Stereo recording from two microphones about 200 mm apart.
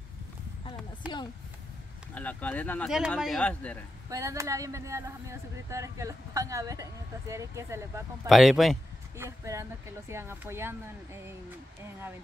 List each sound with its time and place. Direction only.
1.0 s speech: 5° right (ahead or behind)
2.1 s speech: 10° left (ahead or behind)
4.1 s speech: 15° right (ahead or behind)
8.3 s speech: centre (ahead or behind)
9.1 s speech: 15° right (ahead or behind)